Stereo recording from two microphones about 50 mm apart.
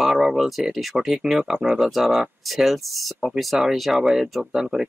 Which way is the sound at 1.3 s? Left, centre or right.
Centre.